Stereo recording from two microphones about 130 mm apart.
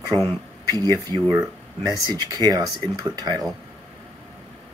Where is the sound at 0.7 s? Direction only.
35° right (ahead or behind).